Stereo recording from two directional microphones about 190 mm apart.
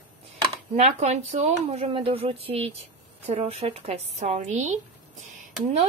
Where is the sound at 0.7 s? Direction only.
35° right (ahead or behind).